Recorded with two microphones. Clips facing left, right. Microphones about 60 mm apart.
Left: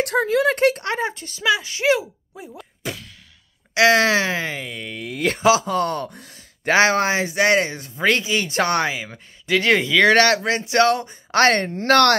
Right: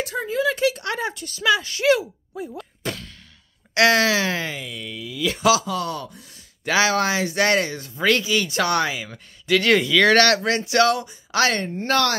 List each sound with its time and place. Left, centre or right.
0.0 s speech: left
0.8 s speech: left; by 3.1 s centre
3.7 s speech: centre; by 5.0 s left
5.0 s speech: left
5.4 s speech: left
11.7 s speech: left